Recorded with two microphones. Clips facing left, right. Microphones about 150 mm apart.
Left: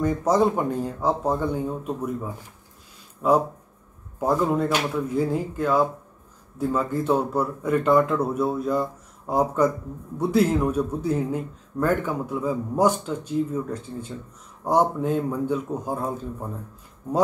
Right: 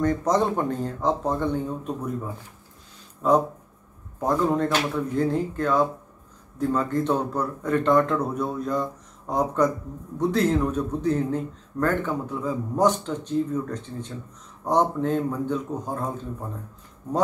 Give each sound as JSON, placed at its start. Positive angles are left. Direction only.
{"t": 0.0, "sound": "speech", "side_deg": 10}
{"t": 3.2, "sound": "speech", "side_deg": 10}